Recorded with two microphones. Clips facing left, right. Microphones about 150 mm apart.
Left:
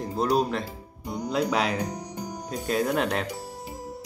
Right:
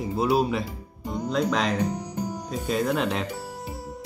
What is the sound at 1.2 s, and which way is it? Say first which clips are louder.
Speech: right 1 dB; 10° left (ahead or behind).